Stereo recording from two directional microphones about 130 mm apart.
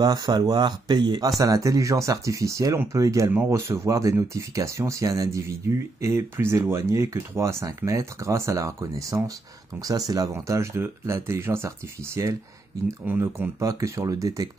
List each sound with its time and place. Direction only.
0.0 s speech: 30° right (ahead or behind)